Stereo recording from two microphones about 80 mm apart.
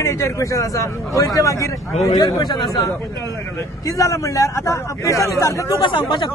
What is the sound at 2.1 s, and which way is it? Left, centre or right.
Speech, left.